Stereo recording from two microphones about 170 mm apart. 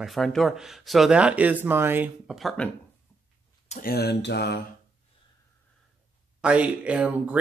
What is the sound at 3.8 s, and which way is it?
Speech, 65° left (ahead or behind).